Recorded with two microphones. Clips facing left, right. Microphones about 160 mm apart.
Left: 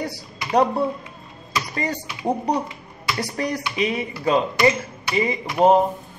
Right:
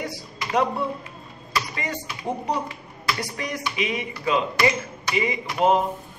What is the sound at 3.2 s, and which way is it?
Speech, 35° left (ahead or behind).